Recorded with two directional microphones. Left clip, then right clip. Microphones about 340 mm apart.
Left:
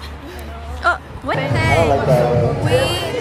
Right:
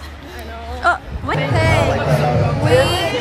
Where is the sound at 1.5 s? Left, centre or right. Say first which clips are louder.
Left 1 dB; centre.